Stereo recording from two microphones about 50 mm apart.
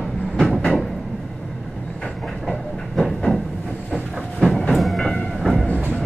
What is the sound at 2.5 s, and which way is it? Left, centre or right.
Train, centre.